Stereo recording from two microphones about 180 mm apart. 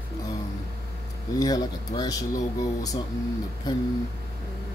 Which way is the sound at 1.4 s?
20° left (ahead or behind).